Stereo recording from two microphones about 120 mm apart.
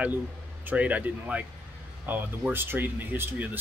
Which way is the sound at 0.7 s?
10° right (ahead or behind).